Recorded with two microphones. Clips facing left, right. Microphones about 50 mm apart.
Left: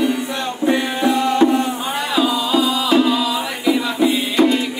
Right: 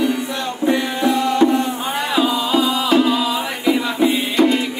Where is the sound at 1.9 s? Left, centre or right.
Right.